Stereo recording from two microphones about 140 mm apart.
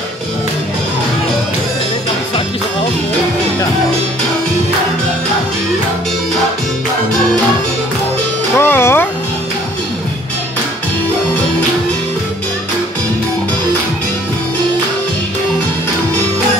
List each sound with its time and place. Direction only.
8.5 s music: 15° left (ahead or behind)